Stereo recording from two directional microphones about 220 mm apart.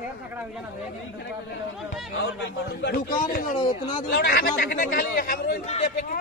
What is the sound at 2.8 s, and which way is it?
A man's voice, 40° left (ahead or behind).